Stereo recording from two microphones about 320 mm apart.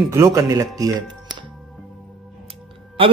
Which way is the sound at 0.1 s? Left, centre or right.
Centre.